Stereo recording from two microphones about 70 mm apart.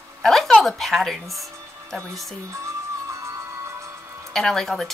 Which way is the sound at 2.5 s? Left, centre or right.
Right.